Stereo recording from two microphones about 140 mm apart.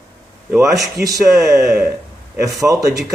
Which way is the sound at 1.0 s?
25° right (ahead or behind).